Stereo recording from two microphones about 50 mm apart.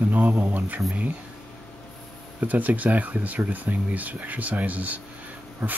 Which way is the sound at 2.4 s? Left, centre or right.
Right.